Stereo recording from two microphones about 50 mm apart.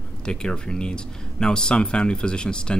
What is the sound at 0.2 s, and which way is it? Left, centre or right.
Speech, centre.